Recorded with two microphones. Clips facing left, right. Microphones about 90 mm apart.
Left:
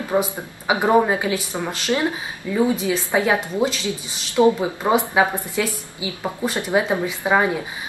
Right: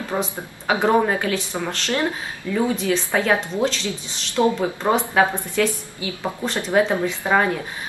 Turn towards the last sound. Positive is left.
turn(degrees=10)  # may be behind; listen again after turning